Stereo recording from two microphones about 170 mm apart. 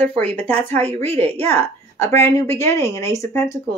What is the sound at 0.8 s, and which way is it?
Speech, 40° right (ahead or behind).